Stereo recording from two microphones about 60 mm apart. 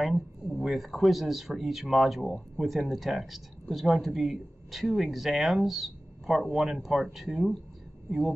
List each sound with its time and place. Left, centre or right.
0.0 s speech: centre